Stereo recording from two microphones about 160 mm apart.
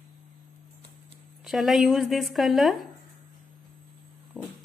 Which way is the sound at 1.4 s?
Centre (ahead or behind).